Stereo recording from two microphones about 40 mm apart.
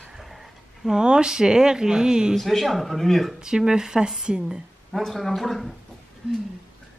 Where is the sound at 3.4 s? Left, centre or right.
Centre.